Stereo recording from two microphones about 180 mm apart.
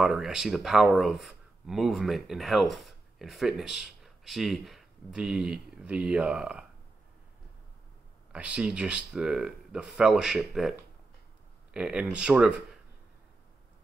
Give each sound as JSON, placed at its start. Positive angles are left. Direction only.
{"t": 0.0, "sound": "speech", "side_deg": 0}
{"t": 8.3, "sound": "speech", "side_deg": -5}